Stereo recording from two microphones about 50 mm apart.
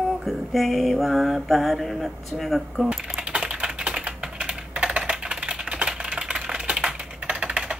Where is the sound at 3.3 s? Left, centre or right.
Centre.